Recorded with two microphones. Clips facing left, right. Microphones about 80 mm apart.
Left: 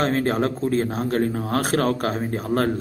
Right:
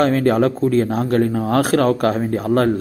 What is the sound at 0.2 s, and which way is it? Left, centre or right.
Speech, right.